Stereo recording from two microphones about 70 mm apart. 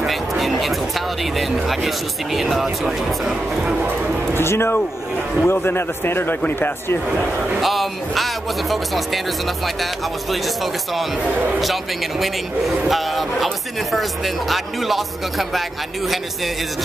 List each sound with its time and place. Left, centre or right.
0.0 s speech: centre
4.4 s a man's voice: left
7.6 s speech: centre
10.3 s speech: centre